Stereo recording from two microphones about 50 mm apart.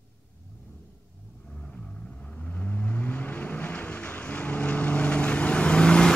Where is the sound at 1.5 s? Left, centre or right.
Left.